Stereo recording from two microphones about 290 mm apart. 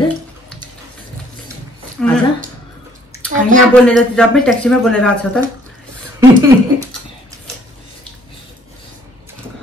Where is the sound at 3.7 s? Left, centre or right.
Centre.